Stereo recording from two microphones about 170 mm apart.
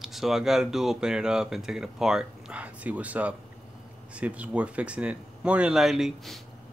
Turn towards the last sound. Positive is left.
turn(degrees=0)  # may be behind; listen again after turning